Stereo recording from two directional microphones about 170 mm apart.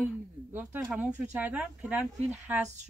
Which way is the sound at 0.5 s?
10° right (ahead or behind).